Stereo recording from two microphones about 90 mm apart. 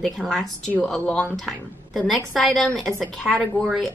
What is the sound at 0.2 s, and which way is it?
Speech, 10° left (ahead or behind).